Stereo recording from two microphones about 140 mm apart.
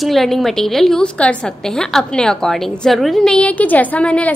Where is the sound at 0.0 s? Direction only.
Centre (ahead or behind).